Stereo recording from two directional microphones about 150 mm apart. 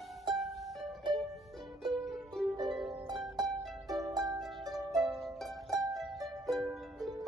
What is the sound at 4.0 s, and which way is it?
Harp, 25° right (ahead or behind).